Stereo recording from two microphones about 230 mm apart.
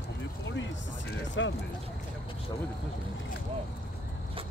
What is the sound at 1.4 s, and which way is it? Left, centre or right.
Speech, left.